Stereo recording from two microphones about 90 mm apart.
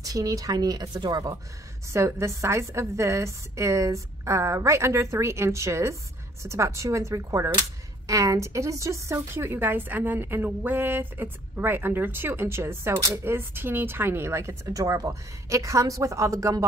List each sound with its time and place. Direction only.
0.0 s a woman's voice: 40° right (ahead or behind)
1.9 s a woman's voice: 35° right (ahead or behind)